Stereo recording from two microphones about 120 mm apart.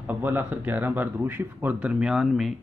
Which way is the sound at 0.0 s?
15° right (ahead or behind).